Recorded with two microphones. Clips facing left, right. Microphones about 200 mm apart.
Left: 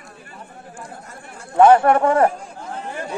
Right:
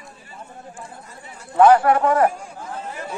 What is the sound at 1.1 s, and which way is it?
Speech, 50° left (ahead or behind).